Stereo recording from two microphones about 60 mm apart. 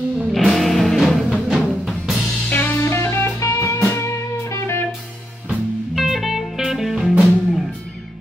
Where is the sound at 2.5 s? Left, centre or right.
Left.